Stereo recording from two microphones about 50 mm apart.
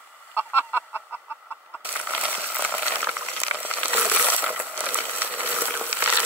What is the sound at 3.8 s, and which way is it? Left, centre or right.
Crushing, right.